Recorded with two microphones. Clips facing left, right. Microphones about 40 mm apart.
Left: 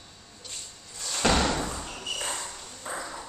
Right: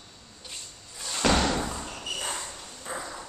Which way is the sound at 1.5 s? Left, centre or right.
Centre.